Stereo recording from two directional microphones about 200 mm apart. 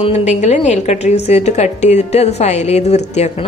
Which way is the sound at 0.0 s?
35° left (ahead or behind).